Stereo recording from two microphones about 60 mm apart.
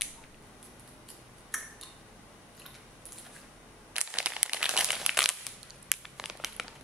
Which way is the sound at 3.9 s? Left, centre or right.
Centre.